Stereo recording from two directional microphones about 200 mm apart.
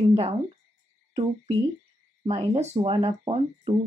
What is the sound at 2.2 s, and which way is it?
Speech, 30° right (ahead or behind).